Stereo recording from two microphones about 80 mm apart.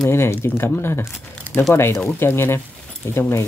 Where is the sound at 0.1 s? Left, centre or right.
Left.